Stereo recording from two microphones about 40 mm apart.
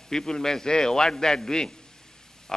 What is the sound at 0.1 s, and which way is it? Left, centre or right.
A man's voice, centre.